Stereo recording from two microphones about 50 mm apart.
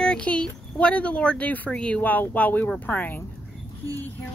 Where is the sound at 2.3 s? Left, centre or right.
Left.